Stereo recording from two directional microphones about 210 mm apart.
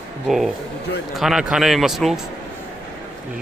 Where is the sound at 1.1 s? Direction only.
Centre (ahead or behind).